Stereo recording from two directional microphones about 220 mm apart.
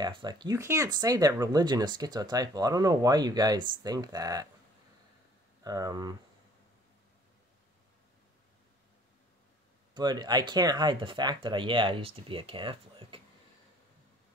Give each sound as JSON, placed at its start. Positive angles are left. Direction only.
{"t": 0.0, "sound": "speech", "side_deg": -20}
{"t": 5.6, "sound": "speech", "side_deg": -15}
{"t": 9.9, "sound": "speech", "side_deg": -20}